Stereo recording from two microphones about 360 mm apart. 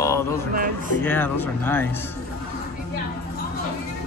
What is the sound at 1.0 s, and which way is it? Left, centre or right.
Speech, centre.